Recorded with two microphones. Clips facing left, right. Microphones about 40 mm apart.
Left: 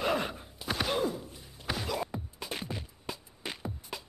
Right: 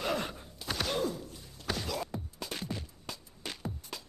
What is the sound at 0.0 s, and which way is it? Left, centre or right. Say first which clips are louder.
Gasp: left 3 dB; centre.